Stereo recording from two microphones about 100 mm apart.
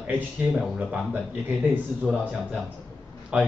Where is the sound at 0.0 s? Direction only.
10° right (ahead or behind).